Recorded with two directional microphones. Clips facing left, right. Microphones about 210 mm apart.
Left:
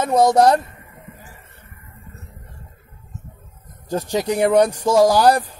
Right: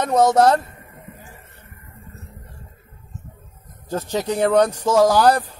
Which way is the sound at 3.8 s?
15° left (ahead or behind).